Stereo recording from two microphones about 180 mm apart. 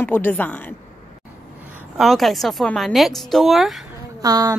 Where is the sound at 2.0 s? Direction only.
Centre (ahead or behind).